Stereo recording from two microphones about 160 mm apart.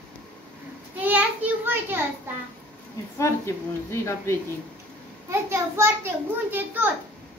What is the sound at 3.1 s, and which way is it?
Speech, 15° left (ahead or behind).